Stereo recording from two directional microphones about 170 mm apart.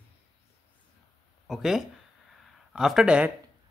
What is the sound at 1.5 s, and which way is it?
Speech, centre (ahead or behind).